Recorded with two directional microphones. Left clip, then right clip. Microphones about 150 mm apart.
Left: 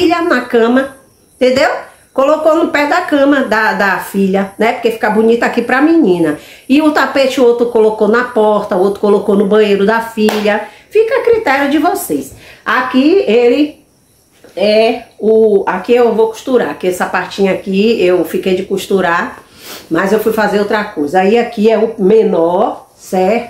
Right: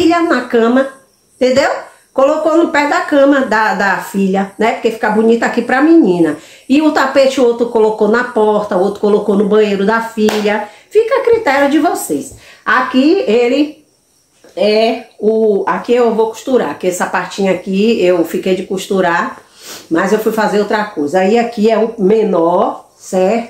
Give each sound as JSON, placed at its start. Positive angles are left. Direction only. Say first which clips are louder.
{"t": 0.0, "sound": "a woman's voice", "louder": "even", "side_deg": 0}